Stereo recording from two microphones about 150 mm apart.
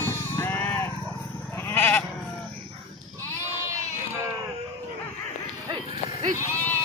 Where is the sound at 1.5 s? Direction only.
15° left (ahead or behind).